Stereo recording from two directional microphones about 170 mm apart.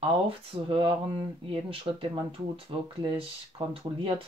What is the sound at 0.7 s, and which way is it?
Speech, 30° right (ahead or behind).